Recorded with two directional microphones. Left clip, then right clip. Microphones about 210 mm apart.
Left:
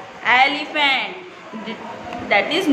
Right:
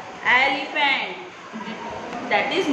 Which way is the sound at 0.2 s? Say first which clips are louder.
Left 3 dB; 50° left (ahead or behind).